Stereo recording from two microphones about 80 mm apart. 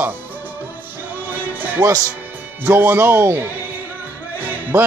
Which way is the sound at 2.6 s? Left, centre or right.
Right.